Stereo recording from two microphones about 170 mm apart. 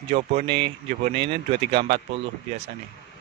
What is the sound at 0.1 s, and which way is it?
Speech, 45° right (ahead or behind).